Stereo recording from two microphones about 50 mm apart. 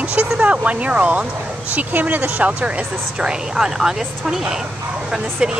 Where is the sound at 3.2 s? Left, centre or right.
Centre.